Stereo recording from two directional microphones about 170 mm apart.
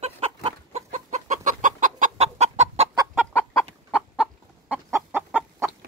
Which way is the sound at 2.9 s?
20° right (ahead or behind).